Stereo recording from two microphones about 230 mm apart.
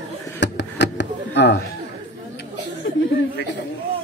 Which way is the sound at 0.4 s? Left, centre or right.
Left.